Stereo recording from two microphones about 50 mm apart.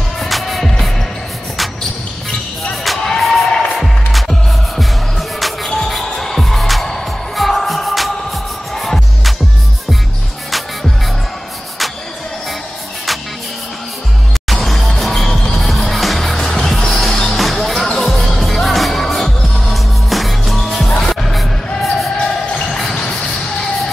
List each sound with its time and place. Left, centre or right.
0.2 s music: centre
2.7 s music: centre
14.5 s music: centre
21.8 s basketball bounce: centre